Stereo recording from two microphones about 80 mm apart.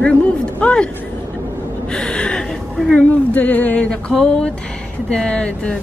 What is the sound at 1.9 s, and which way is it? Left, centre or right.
Gasp, centre.